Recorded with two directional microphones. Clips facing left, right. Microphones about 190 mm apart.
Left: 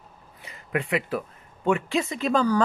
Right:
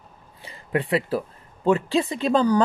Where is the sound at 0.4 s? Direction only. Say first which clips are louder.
Right 3 dB; 30° right (ahead or behind).